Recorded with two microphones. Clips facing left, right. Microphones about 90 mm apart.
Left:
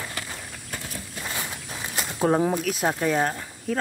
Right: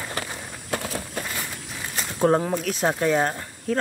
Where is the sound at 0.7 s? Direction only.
85° right.